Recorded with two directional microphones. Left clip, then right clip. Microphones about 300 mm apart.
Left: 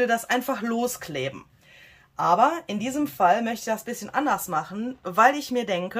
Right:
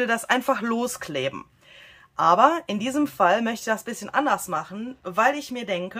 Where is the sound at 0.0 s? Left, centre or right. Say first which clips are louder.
Right 1 dB; centre.